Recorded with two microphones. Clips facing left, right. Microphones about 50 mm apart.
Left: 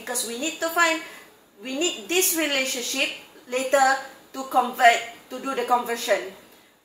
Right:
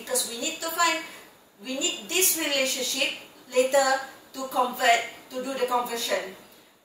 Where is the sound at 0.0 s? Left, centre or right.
Left.